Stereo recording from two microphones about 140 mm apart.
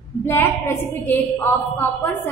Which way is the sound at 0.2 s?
15° left (ahead or behind).